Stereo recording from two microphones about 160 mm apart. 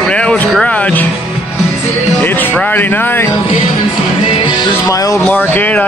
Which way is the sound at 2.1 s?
10° left (ahead or behind).